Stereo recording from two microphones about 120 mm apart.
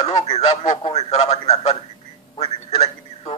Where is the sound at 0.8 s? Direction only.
65° left (ahead or behind).